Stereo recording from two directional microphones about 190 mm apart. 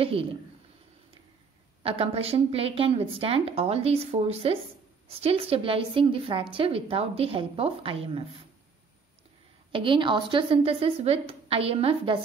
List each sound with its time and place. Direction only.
0.0 s a woman's voice: 30° right (ahead or behind)
1.8 s a woman's voice: 30° right (ahead or behind)
9.7 s a woman's voice: 25° right (ahead or behind)